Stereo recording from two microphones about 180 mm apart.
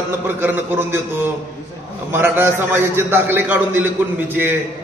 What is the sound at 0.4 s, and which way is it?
A man's voice, 10° right (ahead or behind).